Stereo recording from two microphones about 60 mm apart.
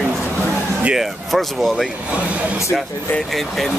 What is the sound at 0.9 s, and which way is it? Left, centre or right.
Speech, centre.